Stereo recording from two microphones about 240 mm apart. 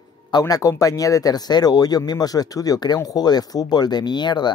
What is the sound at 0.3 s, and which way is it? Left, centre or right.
Speech, centre.